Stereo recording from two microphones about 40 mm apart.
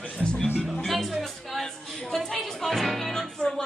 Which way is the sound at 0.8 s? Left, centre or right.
Centre.